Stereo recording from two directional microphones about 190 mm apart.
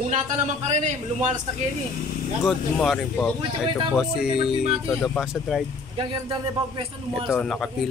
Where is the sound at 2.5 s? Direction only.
Centre (ahead or behind).